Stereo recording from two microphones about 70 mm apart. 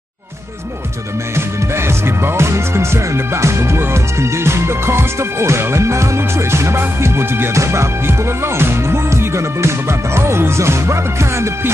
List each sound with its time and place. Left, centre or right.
1.3 s speech: right